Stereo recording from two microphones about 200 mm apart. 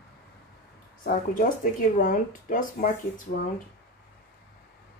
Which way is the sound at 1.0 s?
40° left (ahead or behind).